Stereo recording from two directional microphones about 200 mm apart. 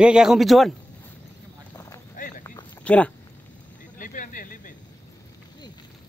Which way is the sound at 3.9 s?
40° left (ahead or behind).